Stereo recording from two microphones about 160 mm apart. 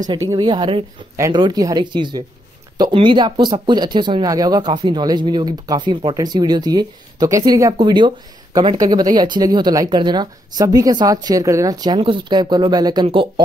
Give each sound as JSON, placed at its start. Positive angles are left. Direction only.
{"t": 0.1, "sound": "speech", "side_deg": -25}
{"t": 1.1, "sound": "speech", "side_deg": -20}